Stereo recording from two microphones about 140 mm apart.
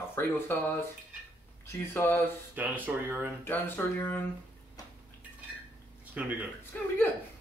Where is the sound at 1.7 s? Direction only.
15° left (ahead or behind).